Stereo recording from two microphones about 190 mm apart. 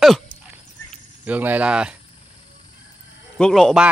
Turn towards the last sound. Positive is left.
turn(degrees=0)  # may be behind; listen again after turning